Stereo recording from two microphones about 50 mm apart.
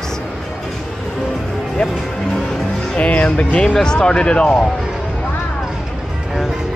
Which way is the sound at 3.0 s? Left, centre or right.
Left.